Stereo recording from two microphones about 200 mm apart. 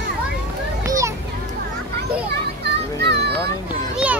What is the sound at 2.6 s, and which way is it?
Children playing, 55° right (ahead or behind).